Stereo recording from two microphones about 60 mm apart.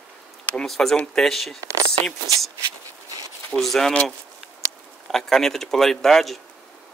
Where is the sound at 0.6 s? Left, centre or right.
Centre.